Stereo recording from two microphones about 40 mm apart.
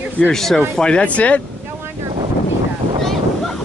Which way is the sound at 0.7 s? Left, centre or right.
Left.